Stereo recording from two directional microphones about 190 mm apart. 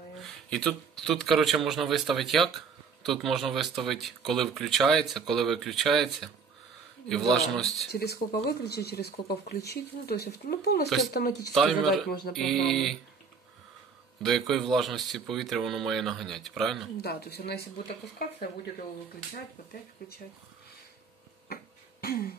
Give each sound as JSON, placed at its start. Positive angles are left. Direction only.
{"t": 0.2, "sound": "speech", "side_deg": 5}
{"t": 7.9, "sound": "speech", "side_deg": 60}
{"t": 11.5, "sound": "speech", "side_deg": 0}
{"t": 14.2, "sound": "speech", "side_deg": 0}
{"t": 17.0, "sound": "speech", "side_deg": 55}
{"t": 20.0, "sound": "speech", "side_deg": 50}